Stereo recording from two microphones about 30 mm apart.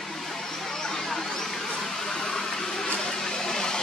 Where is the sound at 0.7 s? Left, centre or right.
Centre.